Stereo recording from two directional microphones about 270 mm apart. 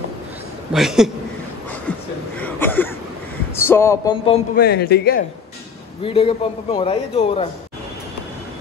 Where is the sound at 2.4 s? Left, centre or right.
Centre.